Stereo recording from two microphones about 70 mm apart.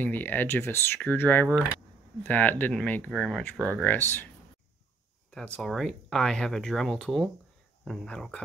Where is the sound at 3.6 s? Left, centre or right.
Left.